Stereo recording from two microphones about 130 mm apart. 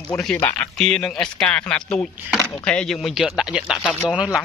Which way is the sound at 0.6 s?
5° left (ahead or behind).